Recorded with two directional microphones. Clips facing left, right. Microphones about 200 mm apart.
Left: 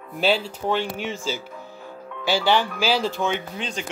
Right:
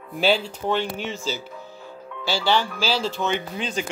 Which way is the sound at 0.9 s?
50° left (ahead or behind).